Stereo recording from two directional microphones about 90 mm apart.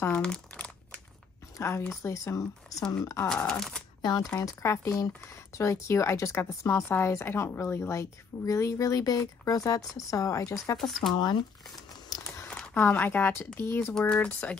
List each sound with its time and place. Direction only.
0.1 s crumpling: 10° left (ahead or behind)
1.6 s a woman's voice: 30° left (ahead or behind)
3.4 s speech: 5° left (ahead or behind)
4.0 s speech: 50° left (ahead or behind)
4.4 s a woman's voice: 35° left (ahead or behind)
10.8 s speech: centre (ahead or behind)
12.1 s crumpling: 45° left (ahead or behind)
12.4 s a sound: 10° left (ahead or behind)
12.7 s speech: 25° left (ahead or behind)
13.9 s speech: 10° left (ahead or behind)